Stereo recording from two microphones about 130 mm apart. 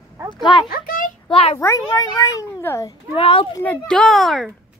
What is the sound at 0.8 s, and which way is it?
Speech, 90° left.